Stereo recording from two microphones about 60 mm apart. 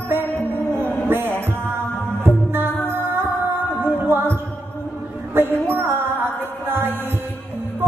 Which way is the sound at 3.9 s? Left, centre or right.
Right.